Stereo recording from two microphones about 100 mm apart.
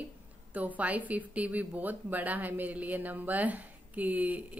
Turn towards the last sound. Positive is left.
turn(degrees=-15)  # may be behind; listen again after turning